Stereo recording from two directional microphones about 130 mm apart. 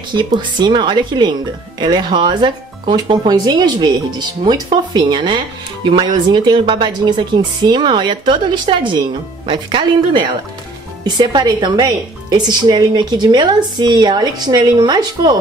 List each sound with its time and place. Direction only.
0.1 s a woman's voice: 35° right (ahead or behind)